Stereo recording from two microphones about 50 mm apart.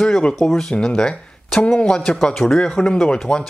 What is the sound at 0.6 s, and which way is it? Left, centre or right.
Speech, centre.